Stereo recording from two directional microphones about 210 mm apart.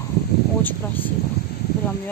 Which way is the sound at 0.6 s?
10° left (ahead or behind).